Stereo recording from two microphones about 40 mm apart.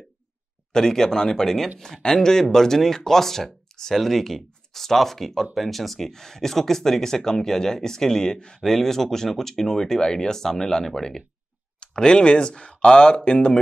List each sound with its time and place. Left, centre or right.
0.7 s speech: centre; by 13.5 s left